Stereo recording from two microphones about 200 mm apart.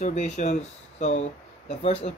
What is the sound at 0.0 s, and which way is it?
Speech, 35° left (ahead or behind).